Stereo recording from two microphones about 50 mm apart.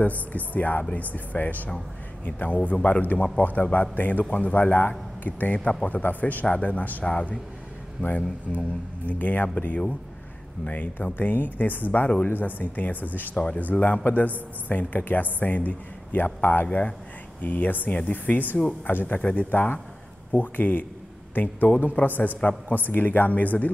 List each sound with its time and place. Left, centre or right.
0.0 s a woman's voice: left
8.0 s a woman's voice: left
10.6 s a woman's voice: left